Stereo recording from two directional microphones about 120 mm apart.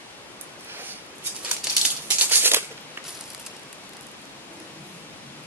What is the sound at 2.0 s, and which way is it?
Maraca, 15° right (ahead or behind).